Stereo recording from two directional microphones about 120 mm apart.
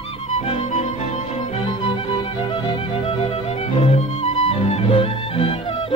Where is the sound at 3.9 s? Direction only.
60° left (ahead or behind).